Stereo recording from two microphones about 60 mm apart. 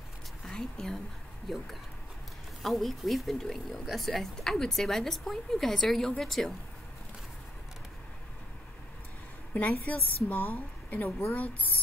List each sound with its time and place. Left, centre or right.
0.5 s speech: centre
2.6 s speech: centre
9.5 s a woman's voice: left